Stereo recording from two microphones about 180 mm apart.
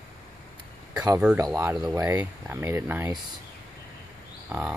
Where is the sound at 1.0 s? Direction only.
15° right (ahead or behind).